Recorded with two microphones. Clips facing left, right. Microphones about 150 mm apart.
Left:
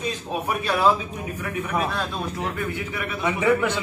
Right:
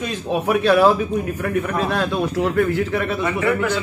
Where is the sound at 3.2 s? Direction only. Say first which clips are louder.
Left 3 dB; 15° left (ahead or behind).